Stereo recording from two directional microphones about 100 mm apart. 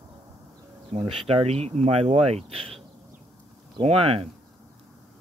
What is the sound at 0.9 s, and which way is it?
Speech, 90° right.